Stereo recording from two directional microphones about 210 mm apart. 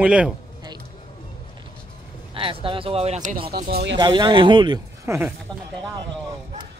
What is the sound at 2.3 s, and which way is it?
Speech, 25° right (ahead or behind).